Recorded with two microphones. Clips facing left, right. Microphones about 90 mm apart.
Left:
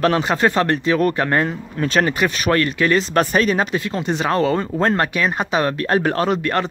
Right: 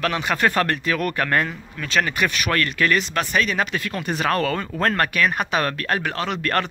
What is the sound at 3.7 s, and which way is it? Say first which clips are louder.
A man's voice: left 4 dB; 25° left (ahead or behind).